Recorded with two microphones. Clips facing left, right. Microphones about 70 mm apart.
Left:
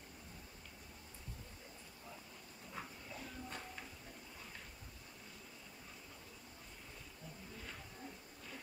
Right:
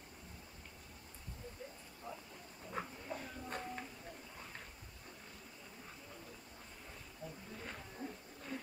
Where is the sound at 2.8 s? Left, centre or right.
Right.